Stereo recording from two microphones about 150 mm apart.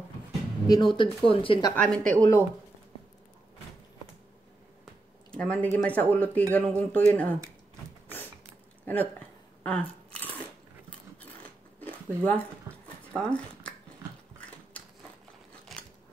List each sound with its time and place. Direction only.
0.7 s speech: 30° left (ahead or behind)
1.8 s speech: 10° left (ahead or behind)
5.3 s speech: 10° left (ahead or behind)
8.8 s speech: 10° left (ahead or behind)
9.6 s a sound: 10° left (ahead or behind)
11.8 s a sound: 10° left (ahead or behind)